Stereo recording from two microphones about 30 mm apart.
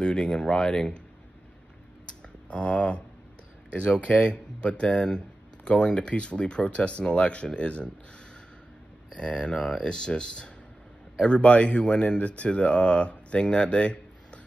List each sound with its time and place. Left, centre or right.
0.0 s speech: left
2.4 s speech: left
9.1 s speech: left
11.1 s a man's voice: left
11.8 s speech: left
12.2 s a man's voice: left